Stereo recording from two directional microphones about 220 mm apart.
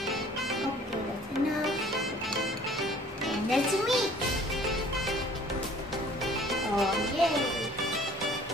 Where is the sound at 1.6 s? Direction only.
Centre (ahead or behind).